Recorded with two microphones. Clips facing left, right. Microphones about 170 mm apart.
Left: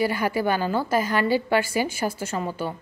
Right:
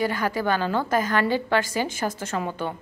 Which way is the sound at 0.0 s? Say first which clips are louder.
Left 1 dB; 10° left (ahead or behind).